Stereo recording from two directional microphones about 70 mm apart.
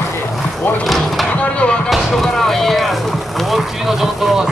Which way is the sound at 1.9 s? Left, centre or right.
Centre.